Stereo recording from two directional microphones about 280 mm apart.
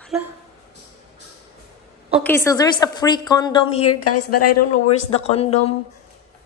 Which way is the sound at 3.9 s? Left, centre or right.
Left.